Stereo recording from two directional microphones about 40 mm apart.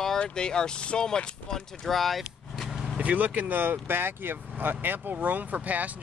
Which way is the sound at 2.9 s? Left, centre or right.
Right.